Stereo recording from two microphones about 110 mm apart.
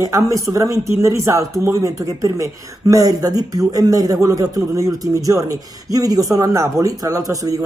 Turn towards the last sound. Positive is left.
turn(degrees=-35)  # may be behind; listen again after turning